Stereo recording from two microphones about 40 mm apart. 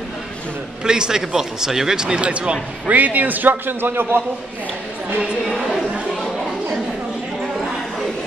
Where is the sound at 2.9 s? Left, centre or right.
Right.